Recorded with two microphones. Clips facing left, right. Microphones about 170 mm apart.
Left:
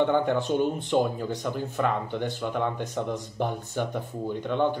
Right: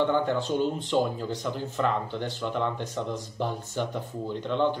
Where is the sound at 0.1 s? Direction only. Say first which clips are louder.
Left 2 dB; 15° left (ahead or behind).